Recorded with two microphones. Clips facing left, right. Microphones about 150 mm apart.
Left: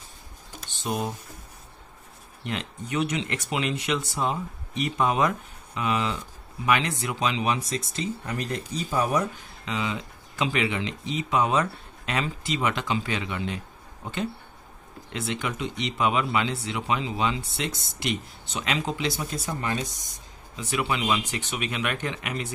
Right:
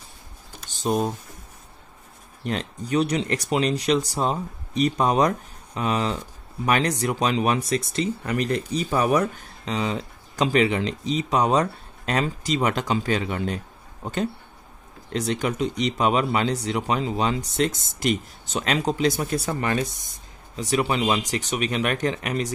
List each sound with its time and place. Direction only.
0.7 s typing: 35° right (ahead or behind)
2.4 s speech: 40° right (ahead or behind); by 9.3 s 70° right (ahead or behind)
9.7 s speech: 40° right (ahead or behind)
19.3 s speech: 65° right (ahead or behind)
20.5 s speech: 40° right (ahead or behind)